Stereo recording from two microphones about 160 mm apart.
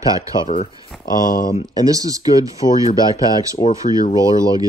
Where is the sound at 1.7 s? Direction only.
20° right (ahead or behind).